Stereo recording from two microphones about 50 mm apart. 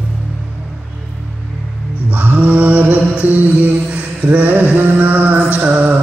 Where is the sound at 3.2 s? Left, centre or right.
Right.